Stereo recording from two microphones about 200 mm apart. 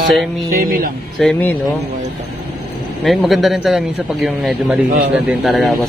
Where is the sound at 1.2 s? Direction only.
5° left (ahead or behind).